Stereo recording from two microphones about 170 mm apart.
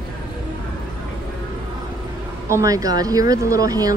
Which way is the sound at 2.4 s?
20° right (ahead or behind).